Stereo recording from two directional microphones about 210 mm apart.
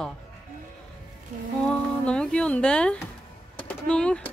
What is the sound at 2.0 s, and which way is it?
Speech, 5° left (ahead or behind).